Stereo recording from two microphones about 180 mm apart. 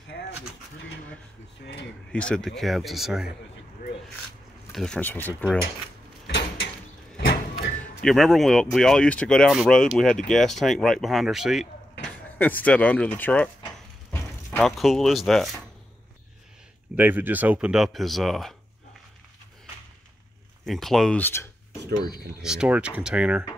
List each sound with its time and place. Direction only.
0.1 s a sound: 65° left (ahead or behind)
1.6 s speech: 60° left (ahead or behind)
2.1 s speech: 5° left (ahead or behind)
4.7 s speech: 5° left (ahead or behind)
6.2 s door: 75° left (ahead or behind)
8.0 s speech: centre (ahead or behind)
12.0 s speech: 10° left (ahead or behind)
14.1 s a sound: 10° left (ahead or behind)
14.8 s speech: centre (ahead or behind)
16.9 s speech: 10° right (ahead or behind)
20.6 s speech: centre (ahead or behind)
22.4 s speech: 5° right (ahead or behind)